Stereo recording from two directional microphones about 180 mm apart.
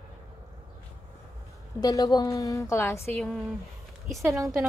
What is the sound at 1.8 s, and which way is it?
A woman's voice, 20° left (ahead or behind).